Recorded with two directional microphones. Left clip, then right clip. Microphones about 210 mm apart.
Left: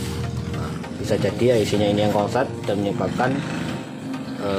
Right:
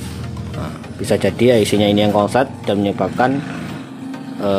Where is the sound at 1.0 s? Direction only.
40° right (ahead or behind).